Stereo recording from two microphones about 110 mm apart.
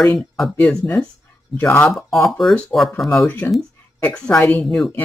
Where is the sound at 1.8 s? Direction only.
Centre (ahead or behind).